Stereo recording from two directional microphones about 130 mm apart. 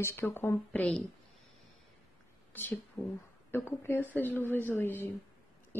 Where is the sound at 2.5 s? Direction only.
15° left (ahead or behind).